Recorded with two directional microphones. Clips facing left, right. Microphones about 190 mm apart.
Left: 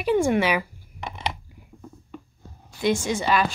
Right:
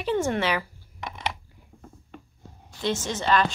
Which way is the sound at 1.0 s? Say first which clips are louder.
Left 2 dB; 25° left (ahead or behind).